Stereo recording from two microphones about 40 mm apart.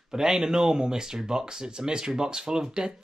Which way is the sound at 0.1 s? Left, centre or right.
Centre.